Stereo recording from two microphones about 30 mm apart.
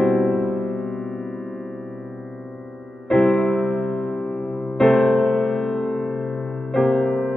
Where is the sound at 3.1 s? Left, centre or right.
Left.